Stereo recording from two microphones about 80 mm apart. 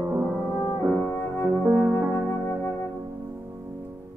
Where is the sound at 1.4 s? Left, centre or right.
Right.